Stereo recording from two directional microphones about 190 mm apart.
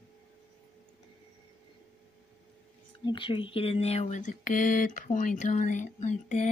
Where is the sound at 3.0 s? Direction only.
25° left (ahead or behind).